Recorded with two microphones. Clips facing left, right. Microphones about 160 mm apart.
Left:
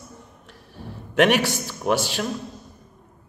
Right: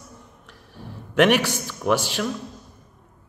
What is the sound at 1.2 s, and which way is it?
A man's voice, 45° left (ahead or behind).